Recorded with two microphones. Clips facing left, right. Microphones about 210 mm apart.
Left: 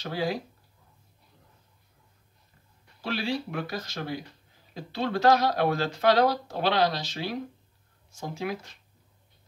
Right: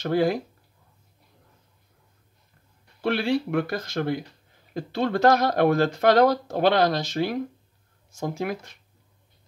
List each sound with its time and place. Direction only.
0.0 s speech: 55° right (ahead or behind)
3.0 s speech: 60° right (ahead or behind)